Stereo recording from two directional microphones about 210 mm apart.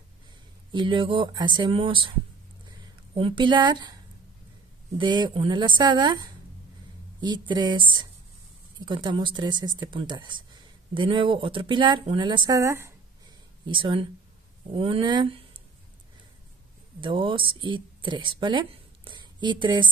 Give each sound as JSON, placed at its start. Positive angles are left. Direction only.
{"t": 0.7, "sound": "speech", "side_deg": -25}
{"t": 2.6, "sound": "a sound", "side_deg": -25}
{"t": 4.9, "sound": "speech", "side_deg": -20}
{"t": 17.0, "sound": "speech", "side_deg": -25}